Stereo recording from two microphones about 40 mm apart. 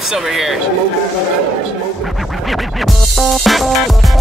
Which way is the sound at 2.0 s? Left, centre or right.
Centre.